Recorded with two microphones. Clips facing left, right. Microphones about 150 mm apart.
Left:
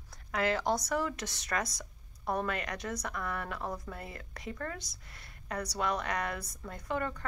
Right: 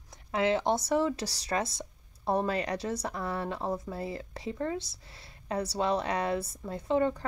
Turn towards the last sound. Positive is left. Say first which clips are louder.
# right 8 dB
turn(degrees=-25)  # may be behind; listen again after turning